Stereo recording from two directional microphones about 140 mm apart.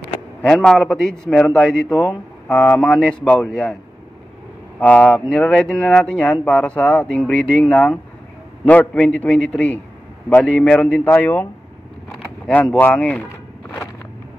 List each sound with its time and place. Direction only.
0.4 s a man's voice: 5° left (ahead or behind)
4.7 s speech: 10° left (ahead or behind)
12.4 s speech: 10° left (ahead or behind)